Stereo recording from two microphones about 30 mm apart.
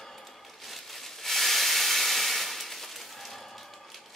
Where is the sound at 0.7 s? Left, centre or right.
Centre.